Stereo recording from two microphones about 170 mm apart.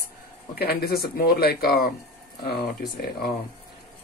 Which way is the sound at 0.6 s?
65° left (ahead or behind).